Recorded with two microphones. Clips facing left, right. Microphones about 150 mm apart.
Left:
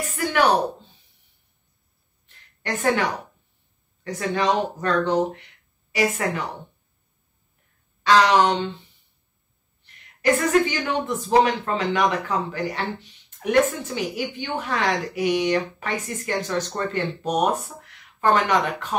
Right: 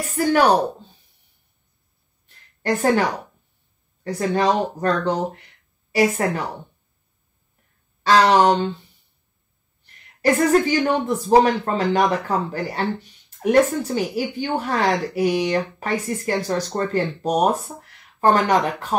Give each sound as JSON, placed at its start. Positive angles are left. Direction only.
{"t": 0.1, "sound": "a woman's voice", "side_deg": -35}
{"t": 2.2, "sound": "a sound", "side_deg": -35}
{"t": 4.0, "sound": "a woman's voice", "side_deg": -40}
{"t": 8.0, "sound": "a woman's voice", "side_deg": -40}
{"t": 10.2, "sound": "a woman's voice", "side_deg": -40}